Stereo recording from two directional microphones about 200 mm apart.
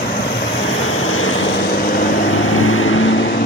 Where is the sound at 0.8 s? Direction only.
90° left; by 2.1 s 45° left (ahead or behind).